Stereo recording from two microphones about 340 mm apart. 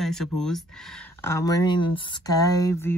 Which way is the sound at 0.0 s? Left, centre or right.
Centre.